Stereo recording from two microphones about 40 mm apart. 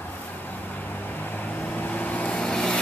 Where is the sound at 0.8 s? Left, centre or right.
Left.